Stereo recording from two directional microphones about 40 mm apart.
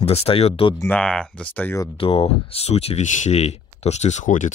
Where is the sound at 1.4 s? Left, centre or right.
Left.